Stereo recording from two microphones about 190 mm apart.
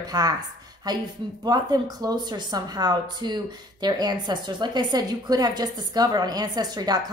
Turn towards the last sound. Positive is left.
turn(degrees=-20)  # may be behind; listen again after turning